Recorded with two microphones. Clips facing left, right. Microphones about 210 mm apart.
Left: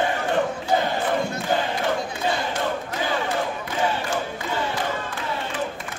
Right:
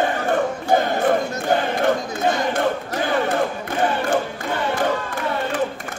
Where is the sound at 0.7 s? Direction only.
55° right (ahead or behind).